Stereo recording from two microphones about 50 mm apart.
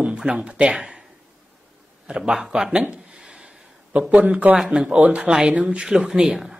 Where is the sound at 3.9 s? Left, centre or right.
Right.